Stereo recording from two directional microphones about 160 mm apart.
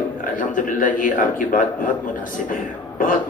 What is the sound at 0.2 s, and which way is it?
A man's voice, 55° left (ahead or behind).